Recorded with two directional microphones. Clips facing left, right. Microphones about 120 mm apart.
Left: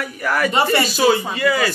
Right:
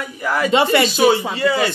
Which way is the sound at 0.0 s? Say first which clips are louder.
Even; 20° right (ahead or behind).